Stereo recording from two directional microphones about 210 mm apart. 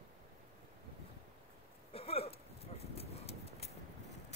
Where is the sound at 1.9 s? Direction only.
30° left (ahead or behind).